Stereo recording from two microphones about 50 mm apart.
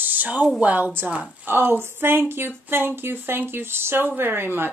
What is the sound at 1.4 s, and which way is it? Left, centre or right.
Speech, right.